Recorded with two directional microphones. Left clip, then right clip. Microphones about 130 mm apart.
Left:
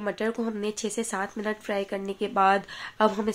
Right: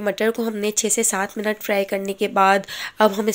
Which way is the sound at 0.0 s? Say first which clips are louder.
Right 8 dB; 35° right (ahead or behind).